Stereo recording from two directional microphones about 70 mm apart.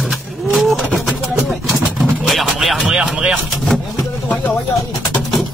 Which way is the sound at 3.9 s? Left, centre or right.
Left.